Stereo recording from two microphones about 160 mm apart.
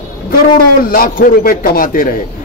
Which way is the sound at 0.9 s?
60° left (ahead or behind).